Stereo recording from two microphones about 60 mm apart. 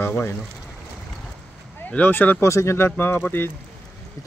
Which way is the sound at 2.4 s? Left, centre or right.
Left.